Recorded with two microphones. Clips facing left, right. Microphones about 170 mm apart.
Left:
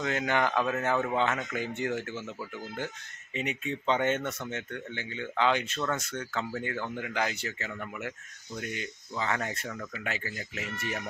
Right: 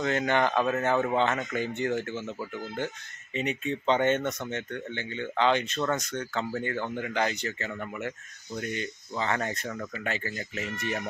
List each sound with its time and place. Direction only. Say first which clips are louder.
0.0 s speech: right 3 dB; 5° left (ahead or behind)
0.5 s speech: right 3 dB; 15° right (ahead or behind)
1.1 s speech: right 3 dB; 5° left (ahead or behind)
3.3 s speech: right 3 dB; 5° left (ahead or behind)